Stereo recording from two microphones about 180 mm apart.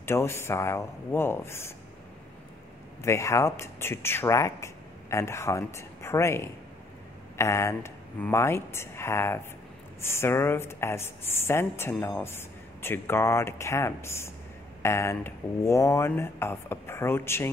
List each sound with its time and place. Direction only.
0.0 s speech: 15° left (ahead or behind)
3.0 s speech: 15° left (ahead or behind)